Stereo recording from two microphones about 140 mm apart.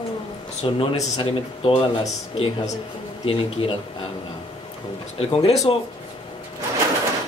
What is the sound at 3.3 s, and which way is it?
Speech, 45° left (ahead or behind).